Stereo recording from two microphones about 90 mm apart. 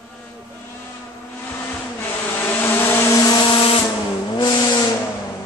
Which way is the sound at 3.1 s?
40° left (ahead or behind).